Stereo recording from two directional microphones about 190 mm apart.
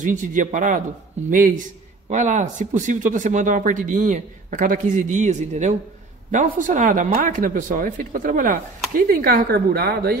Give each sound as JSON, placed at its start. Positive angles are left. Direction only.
{"t": 0.0, "sound": "a man's voice", "side_deg": -40}